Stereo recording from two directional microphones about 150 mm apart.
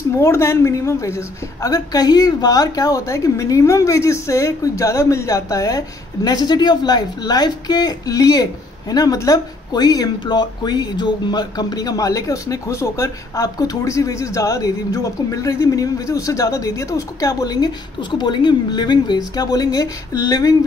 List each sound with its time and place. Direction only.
0.2 s speech: 15° left (ahead or behind)